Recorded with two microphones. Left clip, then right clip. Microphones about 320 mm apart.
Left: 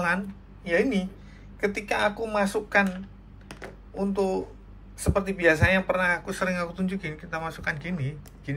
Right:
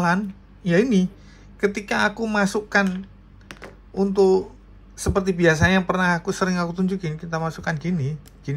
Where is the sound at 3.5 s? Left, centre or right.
Centre.